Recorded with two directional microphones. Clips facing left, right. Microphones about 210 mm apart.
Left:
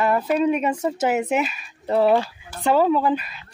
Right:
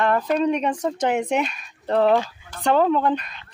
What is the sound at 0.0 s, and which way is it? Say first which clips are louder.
Speech: left 1 dB; 5° left (ahead or behind).